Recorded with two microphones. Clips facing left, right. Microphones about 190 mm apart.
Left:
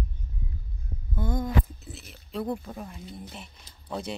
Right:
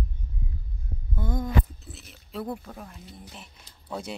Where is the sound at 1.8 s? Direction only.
Centre (ahead or behind).